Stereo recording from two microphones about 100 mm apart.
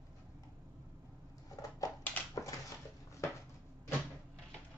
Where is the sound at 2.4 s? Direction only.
35° left (ahead or behind).